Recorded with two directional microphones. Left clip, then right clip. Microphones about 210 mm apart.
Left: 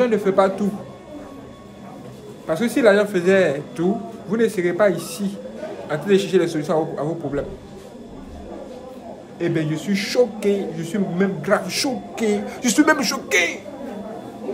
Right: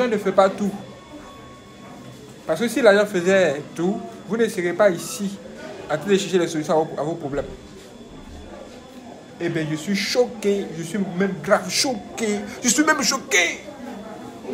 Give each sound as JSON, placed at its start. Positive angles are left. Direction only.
{"t": 0.0, "sound": "speech", "side_deg": 15}
{"t": 2.4, "sound": "speech", "side_deg": 15}
{"t": 9.4, "sound": "speech", "side_deg": 15}